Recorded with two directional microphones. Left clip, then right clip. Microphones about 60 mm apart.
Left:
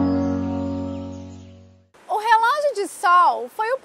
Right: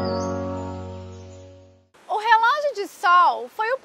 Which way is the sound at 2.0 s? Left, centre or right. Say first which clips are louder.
Even; left.